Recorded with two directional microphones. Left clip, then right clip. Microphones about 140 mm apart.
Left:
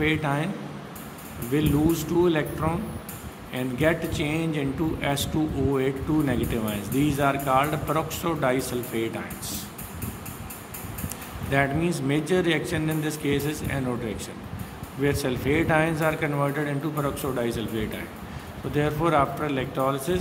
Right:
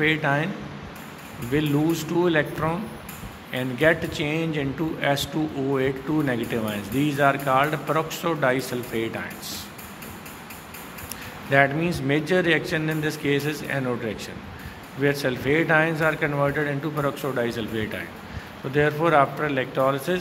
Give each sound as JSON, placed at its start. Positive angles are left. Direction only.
{"t": 0.0, "sound": "a man's voice", "side_deg": -10}
{"t": 1.5, "sound": "a man's voice", "side_deg": -10}
{"t": 11.5, "sound": "a man's voice", "side_deg": -10}